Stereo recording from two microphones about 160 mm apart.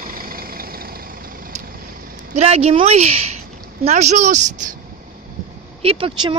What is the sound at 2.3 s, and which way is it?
Speech, 40° right (ahead or behind).